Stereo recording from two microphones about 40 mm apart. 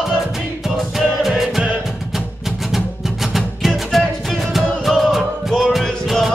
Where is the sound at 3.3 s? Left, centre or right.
Centre.